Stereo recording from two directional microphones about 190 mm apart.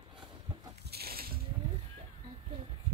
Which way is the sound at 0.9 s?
55° right (ahead or behind).